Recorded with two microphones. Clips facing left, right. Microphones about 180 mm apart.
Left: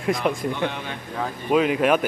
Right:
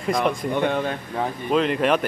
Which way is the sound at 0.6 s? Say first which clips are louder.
Right 5 dB; 50° right (ahead or behind).